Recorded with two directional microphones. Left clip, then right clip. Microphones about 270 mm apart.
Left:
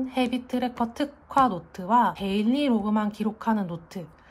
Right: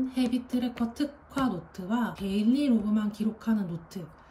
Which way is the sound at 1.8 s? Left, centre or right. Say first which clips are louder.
Left 11 dB; centre.